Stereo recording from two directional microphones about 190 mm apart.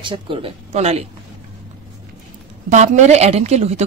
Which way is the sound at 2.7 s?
40° right (ahead or behind).